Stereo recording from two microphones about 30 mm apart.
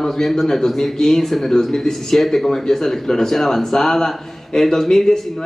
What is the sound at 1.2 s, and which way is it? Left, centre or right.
Speech, centre.